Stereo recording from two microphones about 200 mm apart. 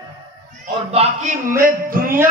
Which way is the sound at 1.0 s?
30° right (ahead or behind).